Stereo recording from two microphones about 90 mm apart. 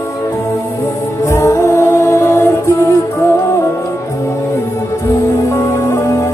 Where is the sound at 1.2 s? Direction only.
30° left (ahead or behind).